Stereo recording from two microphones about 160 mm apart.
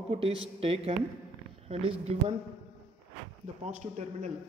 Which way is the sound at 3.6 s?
45° right (ahead or behind).